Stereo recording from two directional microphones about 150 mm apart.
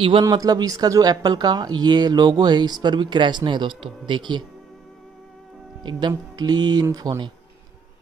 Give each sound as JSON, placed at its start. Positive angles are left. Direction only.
{"t": 0.2, "sound": "speech", "side_deg": -25}
{"t": 5.9, "sound": "speech", "side_deg": -30}